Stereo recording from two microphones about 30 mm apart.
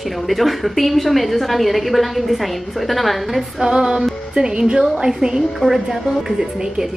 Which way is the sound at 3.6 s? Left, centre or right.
Right.